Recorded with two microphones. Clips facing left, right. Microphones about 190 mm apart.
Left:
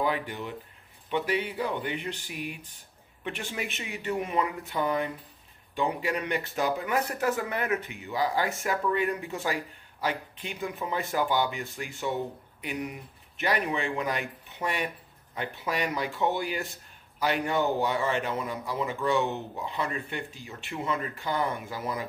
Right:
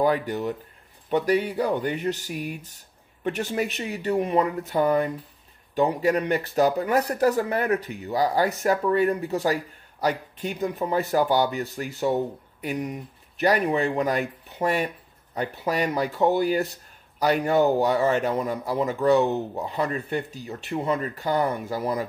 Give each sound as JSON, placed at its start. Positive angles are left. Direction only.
{"t": 0.0, "sound": "speech", "side_deg": -45}